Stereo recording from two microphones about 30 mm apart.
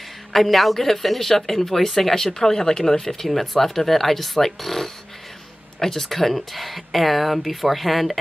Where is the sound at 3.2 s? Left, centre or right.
Centre.